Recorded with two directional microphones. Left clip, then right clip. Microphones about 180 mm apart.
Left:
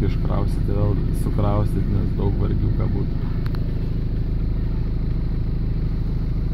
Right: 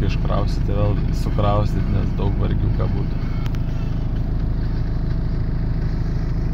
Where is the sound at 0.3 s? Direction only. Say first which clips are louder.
Right 3 dB; 5° left (ahead or behind).